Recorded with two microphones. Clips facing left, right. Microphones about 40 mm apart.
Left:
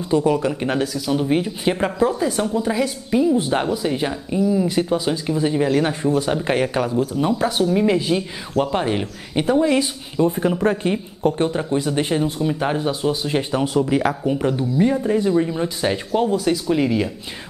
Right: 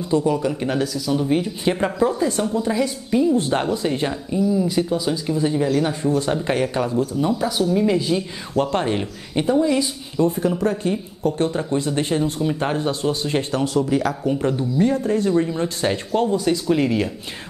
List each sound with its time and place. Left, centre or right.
0.1 s speech: left
0.5 s speech: centre
1.2 s speech: centre
2.5 s speech: left
3.1 s speech: centre
4.3 s speech: left
7.6 s speech: left
8.5 s speech: centre
9.5 s speech: left
12.3 s speech: centre